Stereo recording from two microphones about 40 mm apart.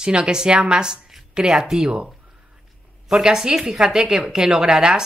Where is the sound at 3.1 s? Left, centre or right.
Centre.